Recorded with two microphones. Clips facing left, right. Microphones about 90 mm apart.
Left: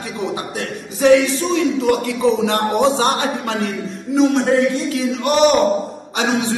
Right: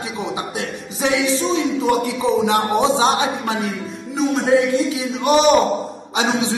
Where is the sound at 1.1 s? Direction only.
55° left (ahead or behind).